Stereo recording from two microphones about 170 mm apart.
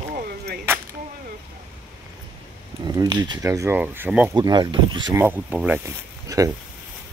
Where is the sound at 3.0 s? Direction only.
20° right (ahead or behind).